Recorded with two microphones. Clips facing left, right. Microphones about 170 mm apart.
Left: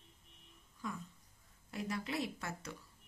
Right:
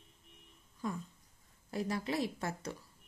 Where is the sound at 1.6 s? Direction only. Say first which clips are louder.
Right 5 dB; 35° right (ahead or behind).